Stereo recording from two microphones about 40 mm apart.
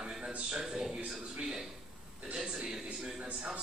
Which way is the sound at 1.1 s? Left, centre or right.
Centre.